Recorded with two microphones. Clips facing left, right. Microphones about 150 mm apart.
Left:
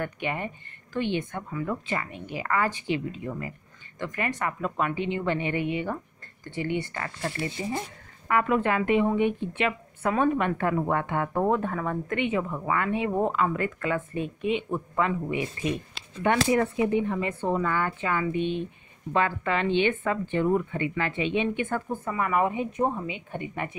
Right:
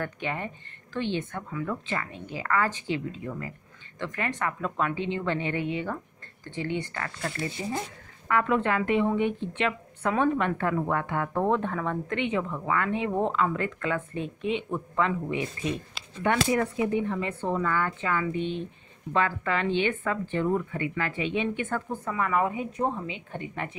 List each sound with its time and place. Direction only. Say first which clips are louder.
0.0 s speech: left 1 dB; 15° left (ahead or behind)
8.3 s speech: left 1 dB; 10° left (ahead or behind)
22.5 s speech: left 3 dB; 25° left (ahead or behind)
22.8 s speech: left 1 dB; 10° left (ahead or behind)